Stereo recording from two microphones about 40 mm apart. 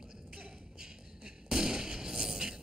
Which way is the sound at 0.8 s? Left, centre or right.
Centre.